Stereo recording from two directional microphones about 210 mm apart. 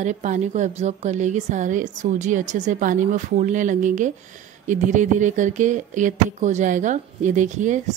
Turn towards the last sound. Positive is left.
turn(degrees=-35)  # may be behind; listen again after turning